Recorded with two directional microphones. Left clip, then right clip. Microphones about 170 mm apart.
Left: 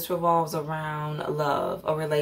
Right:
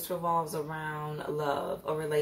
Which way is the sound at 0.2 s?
40° left (ahead or behind).